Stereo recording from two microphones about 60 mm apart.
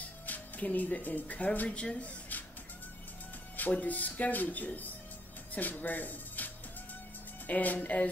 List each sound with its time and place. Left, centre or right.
0.0 s speech: left
3.5 s speech: left